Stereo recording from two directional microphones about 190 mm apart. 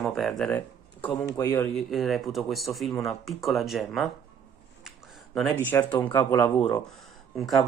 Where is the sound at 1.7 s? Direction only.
Centre (ahead or behind).